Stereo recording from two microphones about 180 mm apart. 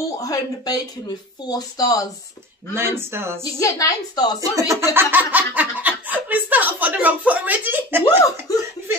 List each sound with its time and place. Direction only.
0.2 s speech: 20° left (ahead or behind)
2.7 s speech: 15° right (ahead or behind)
3.4 s speech: 20° left (ahead or behind)
4.4 s speech: 15° right (ahead or behind)
8.5 s speech: 20° left (ahead or behind)